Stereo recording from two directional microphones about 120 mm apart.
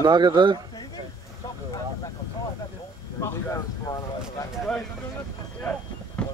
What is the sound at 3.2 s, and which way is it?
Speech, 25° left (ahead or behind).